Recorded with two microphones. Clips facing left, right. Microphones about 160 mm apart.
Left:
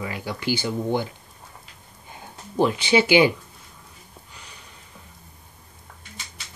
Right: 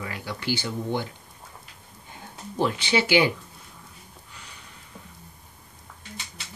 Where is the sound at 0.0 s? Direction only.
15° left (ahead or behind).